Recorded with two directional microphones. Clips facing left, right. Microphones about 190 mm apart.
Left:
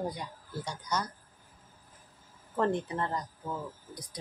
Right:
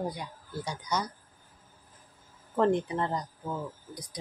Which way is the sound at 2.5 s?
15° right (ahead or behind).